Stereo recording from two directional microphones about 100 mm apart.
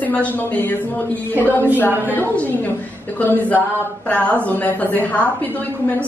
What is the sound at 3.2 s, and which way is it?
A woman's voice, 15° left (ahead or behind).